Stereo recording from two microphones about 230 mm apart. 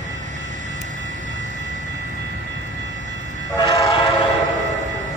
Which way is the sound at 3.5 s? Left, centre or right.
Centre.